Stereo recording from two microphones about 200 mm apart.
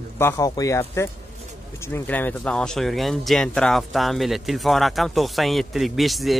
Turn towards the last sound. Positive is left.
turn(degrees=0)  # may be behind; listen again after turning